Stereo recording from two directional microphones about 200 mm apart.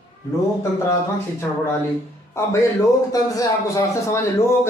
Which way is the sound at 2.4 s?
15° left (ahead or behind).